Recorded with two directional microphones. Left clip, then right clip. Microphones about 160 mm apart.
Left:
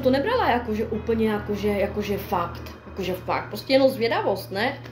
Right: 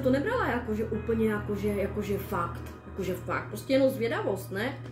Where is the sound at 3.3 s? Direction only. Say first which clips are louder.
Left 7 dB; 25° right (ahead or behind).